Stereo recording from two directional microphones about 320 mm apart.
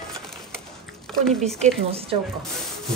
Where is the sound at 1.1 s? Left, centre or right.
Centre.